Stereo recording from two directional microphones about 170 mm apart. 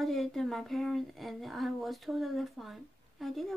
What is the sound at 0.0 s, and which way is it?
Speech, centre (ahead or behind).